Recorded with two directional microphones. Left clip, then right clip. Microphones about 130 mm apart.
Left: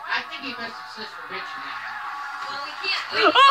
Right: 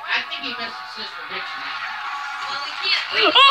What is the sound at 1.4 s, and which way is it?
Music, 20° right (ahead or behind).